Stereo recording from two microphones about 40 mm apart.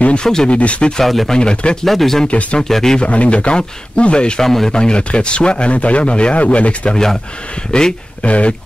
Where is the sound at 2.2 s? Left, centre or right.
Left.